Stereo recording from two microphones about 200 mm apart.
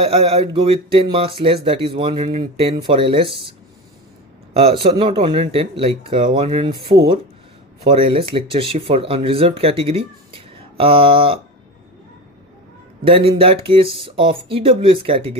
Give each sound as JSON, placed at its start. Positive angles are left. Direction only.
{"t": 0.0, "sound": "speech", "side_deg": -30}
{"t": 4.6, "sound": "speech", "side_deg": -30}
{"t": 13.0, "sound": "speech", "side_deg": -30}